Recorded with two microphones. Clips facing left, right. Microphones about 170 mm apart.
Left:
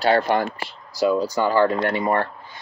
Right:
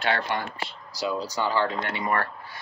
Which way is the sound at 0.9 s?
50° left (ahead or behind).